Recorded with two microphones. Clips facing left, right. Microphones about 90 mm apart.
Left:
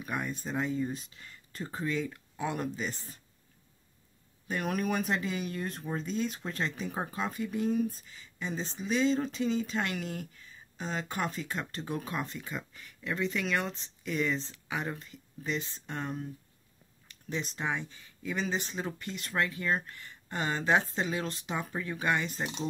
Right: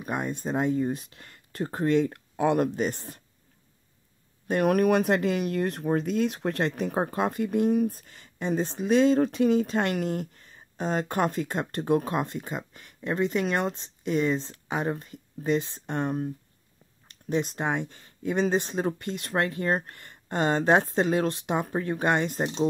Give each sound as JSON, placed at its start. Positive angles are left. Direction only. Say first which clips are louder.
{"t": 0.0, "sound": "speech", "louder": "right 5 dB", "side_deg": -45}
{"t": 4.5, "sound": "speech", "louder": "right 10 dB", "side_deg": -55}
{"t": 14.4, "sound": "speech", "louder": "right 6 dB", "side_deg": -45}
{"t": 17.3, "sound": "speech", "louder": "right 7 dB", "side_deg": -50}